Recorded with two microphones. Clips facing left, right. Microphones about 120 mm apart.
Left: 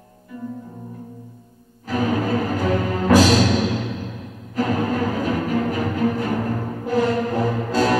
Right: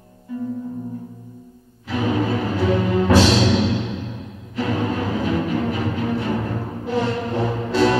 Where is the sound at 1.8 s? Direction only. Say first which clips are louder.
Even; 40° left (ahead or behind).